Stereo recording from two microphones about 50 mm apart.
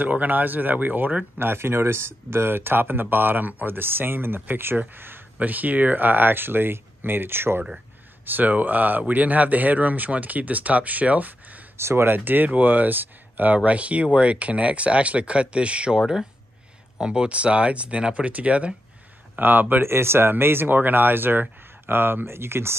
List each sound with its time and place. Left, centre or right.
0.0 s speech: right
1.4 s speech: right
8.3 s speech: right
11.7 s speech: right
12.1 s speech: right
13.6 s speech: right
17.0 s speech: centre
19.3 s speech: right
19.8 s speech: right